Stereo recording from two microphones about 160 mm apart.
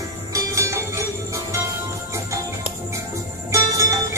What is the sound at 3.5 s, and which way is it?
Music, 20° right (ahead or behind).